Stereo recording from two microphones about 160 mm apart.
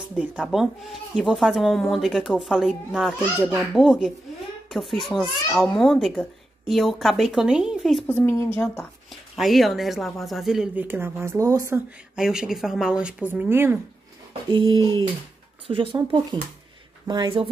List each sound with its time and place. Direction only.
0.1 s a woman's voice: 5° right (ahead or behind)
3.8 s speech: 5° right (ahead or behind)
8.1 s a woman's voice: 15° left (ahead or behind)
9.4 s speech: centre (ahead or behind); by 11.8 s 20° right (ahead or behind)
12.2 s speech: 5° right (ahead or behind)
14.5 s a sound: 25° right (ahead or behind)
15.6 s speech: 35° right (ahead or behind)
17.1 s a sound: 25° right (ahead or behind)